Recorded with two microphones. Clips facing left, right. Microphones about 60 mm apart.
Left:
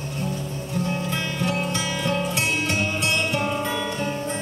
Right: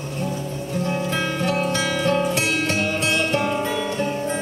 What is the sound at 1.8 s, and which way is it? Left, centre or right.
Music, right.